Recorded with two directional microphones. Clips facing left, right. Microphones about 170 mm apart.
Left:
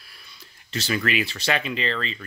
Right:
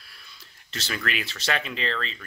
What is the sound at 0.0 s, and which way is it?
Speech, centre (ahead or behind).